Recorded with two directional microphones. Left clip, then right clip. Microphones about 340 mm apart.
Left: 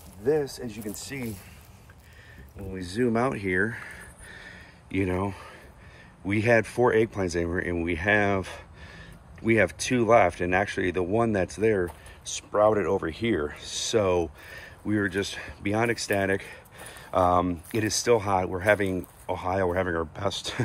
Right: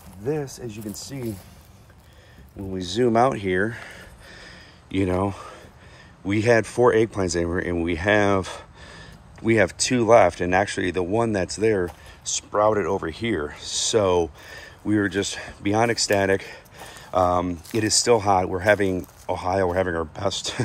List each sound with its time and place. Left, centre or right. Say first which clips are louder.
1.0 s speech: right 5 dB; centre
2.7 s speech: right 6 dB; centre